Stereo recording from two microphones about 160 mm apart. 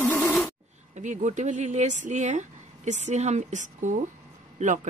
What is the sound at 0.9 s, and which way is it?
Speech, 50° right (ahead or behind).